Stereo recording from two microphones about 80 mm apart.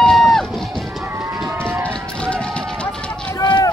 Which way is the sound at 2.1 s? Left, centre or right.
Centre.